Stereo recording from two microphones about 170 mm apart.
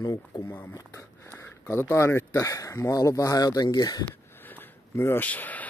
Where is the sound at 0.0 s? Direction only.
20° left (ahead or behind).